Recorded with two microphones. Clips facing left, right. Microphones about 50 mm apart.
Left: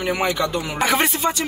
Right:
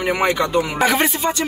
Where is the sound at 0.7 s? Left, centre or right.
Centre.